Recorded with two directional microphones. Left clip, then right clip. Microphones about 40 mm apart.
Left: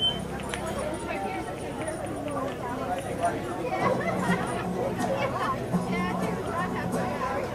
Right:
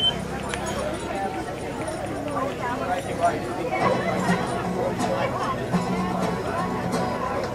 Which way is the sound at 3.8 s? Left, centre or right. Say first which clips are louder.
Right 4 dB; right.